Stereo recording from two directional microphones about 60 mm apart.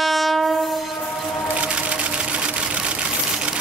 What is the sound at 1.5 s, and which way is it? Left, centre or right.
Sewing machine, centre.